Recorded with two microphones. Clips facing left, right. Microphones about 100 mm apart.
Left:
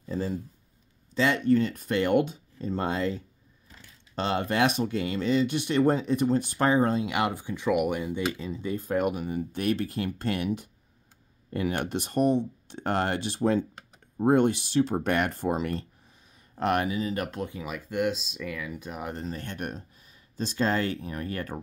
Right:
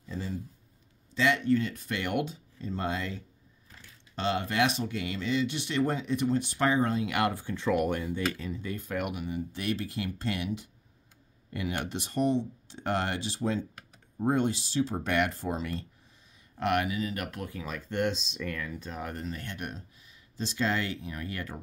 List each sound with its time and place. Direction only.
0.1 s speech: 40° left (ahead or behind)
4.1 s speech: 40° left (ahead or behind)
7.1 s speech: 20° left (ahead or behind)
8.8 s speech: 35° left (ahead or behind); by 15.8 s 55° left (ahead or behind)
16.5 s speech: 35° left (ahead or behind); by 19.2 s 15° left (ahead or behind)
19.2 s speech: 35° left (ahead or behind)